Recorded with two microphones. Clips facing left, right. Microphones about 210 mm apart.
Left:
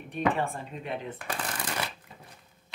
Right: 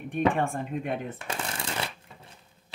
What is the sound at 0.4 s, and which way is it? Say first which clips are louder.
Speech: right 4 dB; 50° right (ahead or behind).